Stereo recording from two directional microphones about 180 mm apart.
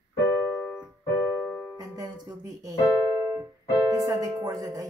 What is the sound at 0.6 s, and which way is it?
Keyboard, 10° left (ahead or behind).